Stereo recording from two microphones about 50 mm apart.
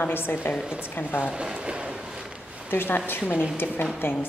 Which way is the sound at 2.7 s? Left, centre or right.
Left.